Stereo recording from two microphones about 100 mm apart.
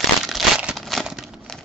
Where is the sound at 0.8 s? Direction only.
Centre (ahead or behind).